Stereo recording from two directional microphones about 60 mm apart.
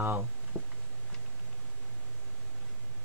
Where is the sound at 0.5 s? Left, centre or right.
Left.